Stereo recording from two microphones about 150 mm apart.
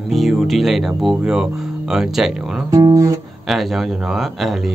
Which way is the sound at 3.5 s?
Centre (ahead or behind).